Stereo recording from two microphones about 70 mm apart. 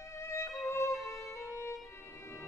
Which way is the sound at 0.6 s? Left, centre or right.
Left.